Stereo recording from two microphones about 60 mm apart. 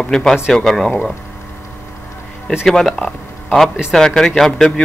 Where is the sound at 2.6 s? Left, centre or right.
Centre.